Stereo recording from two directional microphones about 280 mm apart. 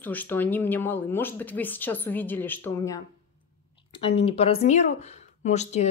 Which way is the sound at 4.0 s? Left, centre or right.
Left.